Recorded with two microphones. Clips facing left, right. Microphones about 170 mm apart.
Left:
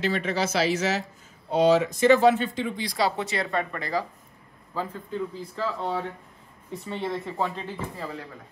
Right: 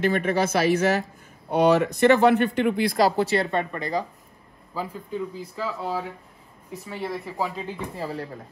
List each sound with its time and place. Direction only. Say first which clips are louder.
0.0 s speech: right 4 dB; 55° right (ahead or behind)
3.1 s speech: right 6 dB; 35° right (ahead or behind)
4.7 s speech: even; 10° right (ahead or behind)